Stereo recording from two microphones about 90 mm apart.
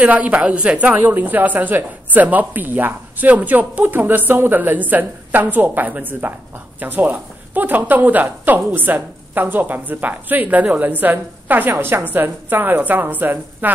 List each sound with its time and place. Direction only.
0.0 s a woman's voice: 15° right (ahead or behind)